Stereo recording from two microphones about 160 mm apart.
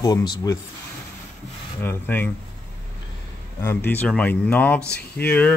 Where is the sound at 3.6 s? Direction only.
15° left (ahead or behind).